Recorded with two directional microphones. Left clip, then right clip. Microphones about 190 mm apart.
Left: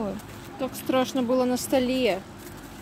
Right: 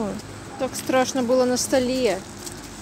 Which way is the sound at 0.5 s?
10° left (ahead or behind).